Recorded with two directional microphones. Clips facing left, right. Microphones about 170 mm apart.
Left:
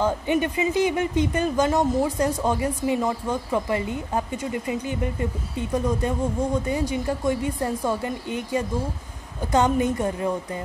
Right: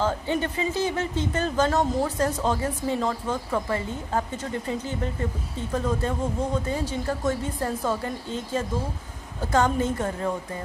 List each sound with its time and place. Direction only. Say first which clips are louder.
0.0 s speech: left 3 dB; 15° left (ahead or behind)